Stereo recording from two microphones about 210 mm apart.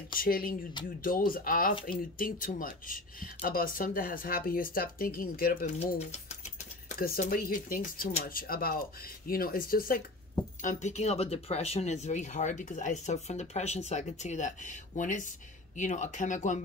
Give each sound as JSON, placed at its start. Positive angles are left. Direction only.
{"t": 0.1, "sound": "speech", "side_deg": 45}